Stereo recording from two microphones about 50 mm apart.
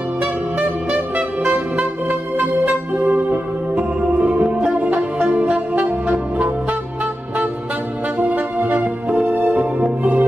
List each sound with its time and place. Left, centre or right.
3.1 s music: right
6.0 s brass instrument: centre
8.2 s music: right